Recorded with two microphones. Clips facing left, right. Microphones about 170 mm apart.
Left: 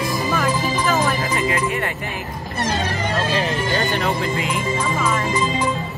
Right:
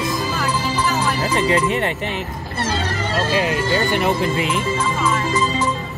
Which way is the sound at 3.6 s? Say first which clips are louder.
Right 2 dB; 15° left (ahead or behind).